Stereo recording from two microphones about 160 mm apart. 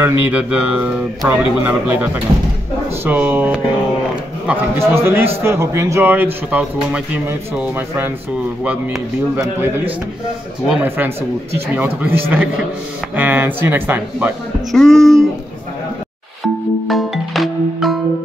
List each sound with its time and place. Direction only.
0.0 s speech: 10° right (ahead or behind)
9.3 s speech: 10° right (ahead or behind)
14.7 s music: centre (ahead or behind)
16.8 s music: centre (ahead or behind)